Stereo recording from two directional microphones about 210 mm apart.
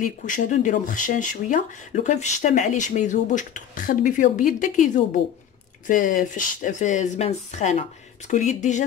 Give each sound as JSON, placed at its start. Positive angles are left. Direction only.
{"t": 0.0, "sound": "speech", "side_deg": 35}